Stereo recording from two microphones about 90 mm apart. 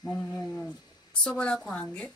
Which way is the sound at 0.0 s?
45° left (ahead or behind).